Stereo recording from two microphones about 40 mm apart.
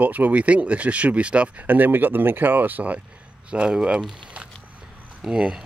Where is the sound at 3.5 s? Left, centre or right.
Right.